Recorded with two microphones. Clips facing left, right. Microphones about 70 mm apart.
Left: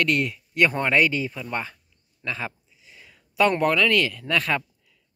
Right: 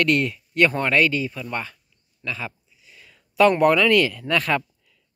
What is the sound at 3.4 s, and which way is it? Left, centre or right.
Speech, centre.